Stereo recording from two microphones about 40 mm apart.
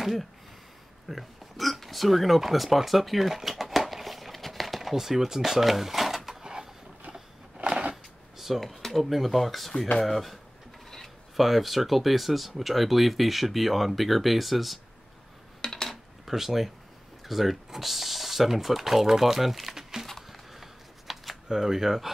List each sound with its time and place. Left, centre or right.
0.0 s speech: centre
1.0 s a sound: centre
4.9 s speech: centre
6.4 s a sound: centre
7.9 s drawer open or close: centre
8.8 s speech: centre
15.6 s cutlery: centre
16.3 s speech: centre
20.2 s camera: centre